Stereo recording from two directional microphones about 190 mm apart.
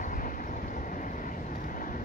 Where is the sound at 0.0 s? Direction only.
45° left (ahead or behind).